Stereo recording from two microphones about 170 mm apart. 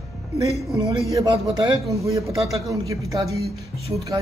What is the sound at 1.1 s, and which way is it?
A man's voice, 25° right (ahead or behind).